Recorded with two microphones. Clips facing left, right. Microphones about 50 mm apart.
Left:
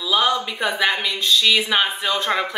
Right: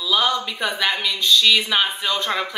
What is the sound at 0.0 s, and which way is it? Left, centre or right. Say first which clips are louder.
Speech: left 1 dB; centre.